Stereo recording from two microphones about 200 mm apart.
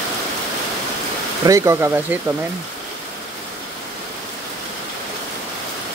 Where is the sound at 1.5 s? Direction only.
15° right (ahead or behind).